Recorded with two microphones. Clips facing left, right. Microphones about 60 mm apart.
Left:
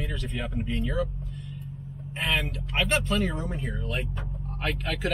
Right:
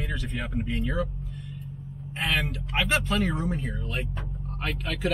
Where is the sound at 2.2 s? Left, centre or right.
Centre.